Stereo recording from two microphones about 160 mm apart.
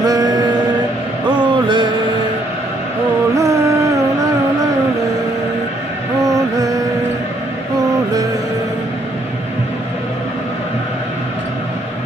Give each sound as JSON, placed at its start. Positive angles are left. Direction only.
{"t": 0.0, "sound": "a sound", "side_deg": -20}
{"t": 1.3, "sound": "music", "side_deg": -30}
{"t": 3.3, "sound": "music", "side_deg": -20}
{"t": 6.2, "sound": "music", "side_deg": -20}